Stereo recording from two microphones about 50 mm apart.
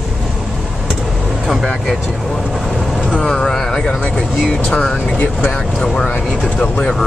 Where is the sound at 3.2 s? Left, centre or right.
Centre.